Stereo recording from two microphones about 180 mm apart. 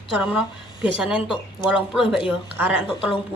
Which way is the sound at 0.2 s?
5° right (ahead or behind).